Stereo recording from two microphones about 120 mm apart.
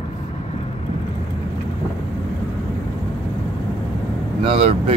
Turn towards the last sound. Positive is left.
turn(degrees=-55)  # may be behind; listen again after turning